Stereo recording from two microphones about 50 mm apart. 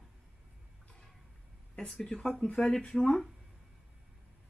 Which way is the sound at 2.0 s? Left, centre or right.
Centre.